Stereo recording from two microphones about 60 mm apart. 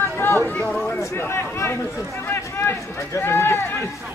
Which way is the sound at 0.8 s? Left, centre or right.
Left.